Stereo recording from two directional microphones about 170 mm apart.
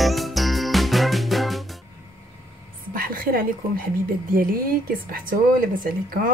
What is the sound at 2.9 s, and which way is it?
Speech, 55° right (ahead or behind).